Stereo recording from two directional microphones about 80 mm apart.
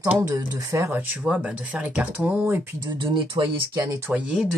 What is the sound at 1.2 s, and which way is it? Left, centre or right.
Speech, centre.